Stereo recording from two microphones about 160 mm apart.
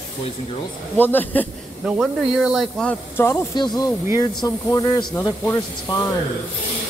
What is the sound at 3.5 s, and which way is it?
Speech, 25° left (ahead or behind).